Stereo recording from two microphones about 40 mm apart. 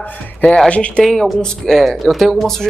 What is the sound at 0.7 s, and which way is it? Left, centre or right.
Speech, left.